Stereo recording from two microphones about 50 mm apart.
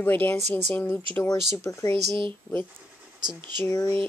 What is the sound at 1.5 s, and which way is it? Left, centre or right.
Speech, left.